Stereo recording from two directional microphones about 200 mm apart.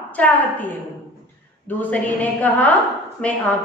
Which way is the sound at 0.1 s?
10° left (ahead or behind).